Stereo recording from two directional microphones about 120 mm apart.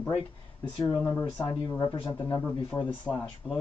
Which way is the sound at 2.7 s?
15° left (ahead or behind).